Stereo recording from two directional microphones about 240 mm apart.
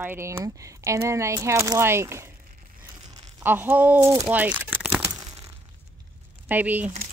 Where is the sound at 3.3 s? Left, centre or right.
Centre.